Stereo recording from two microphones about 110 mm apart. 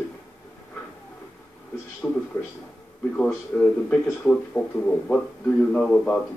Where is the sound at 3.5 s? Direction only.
5° left (ahead or behind).